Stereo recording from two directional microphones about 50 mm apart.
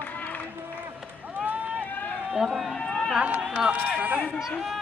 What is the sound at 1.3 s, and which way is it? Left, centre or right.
Run, right.